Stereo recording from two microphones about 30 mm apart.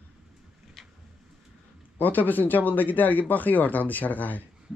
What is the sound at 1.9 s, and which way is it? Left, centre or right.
Speech, left.